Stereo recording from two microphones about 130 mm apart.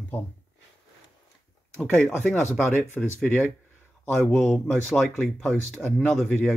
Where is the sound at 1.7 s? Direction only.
5° left (ahead or behind).